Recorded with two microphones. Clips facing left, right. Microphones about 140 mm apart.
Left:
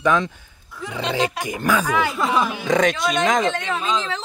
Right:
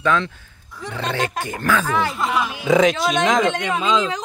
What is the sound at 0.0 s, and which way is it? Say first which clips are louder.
Speech: left 1 dB; 15° left (ahead or behind).